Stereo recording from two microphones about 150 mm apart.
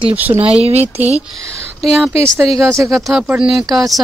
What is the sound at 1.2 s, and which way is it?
Speech, centre (ahead or behind).